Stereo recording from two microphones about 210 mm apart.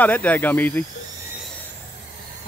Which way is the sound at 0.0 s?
10° left (ahead or behind).